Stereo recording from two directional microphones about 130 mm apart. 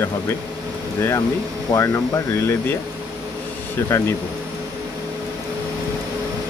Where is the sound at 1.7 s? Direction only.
25° left (ahead or behind).